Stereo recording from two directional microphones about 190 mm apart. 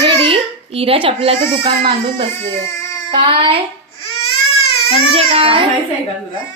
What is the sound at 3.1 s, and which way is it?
Speech, 30° right (ahead or behind).